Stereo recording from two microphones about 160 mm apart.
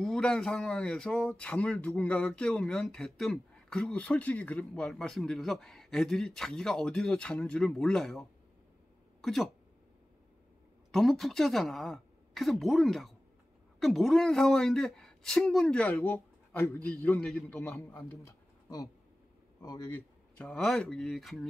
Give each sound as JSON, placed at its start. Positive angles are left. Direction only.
{"t": 0.0, "sound": "speech", "side_deg": 5}
{"t": 10.9, "sound": "speech", "side_deg": 0}
{"t": 17.6, "sound": "a man's voice", "side_deg": 15}
{"t": 20.3, "sound": "speech", "side_deg": 5}